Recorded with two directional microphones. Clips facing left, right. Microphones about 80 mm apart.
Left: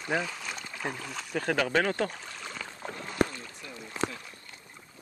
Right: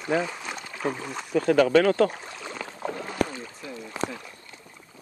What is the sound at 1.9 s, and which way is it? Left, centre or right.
Speech, right.